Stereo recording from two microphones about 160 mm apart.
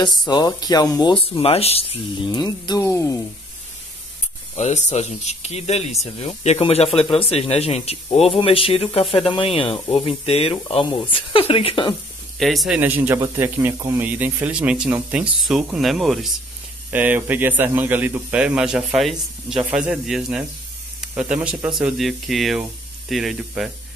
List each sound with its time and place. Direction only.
0.3 s speech: 25° left (ahead or behind)
1.3 s speech: 35° left (ahead or behind); by 3.2 s 20° left (ahead or behind)
4.6 s speech: 45° left (ahead or behind)
12.4 s a man's voice: centre (ahead or behind)
16.9 s a man's voice: 10° right (ahead or behind)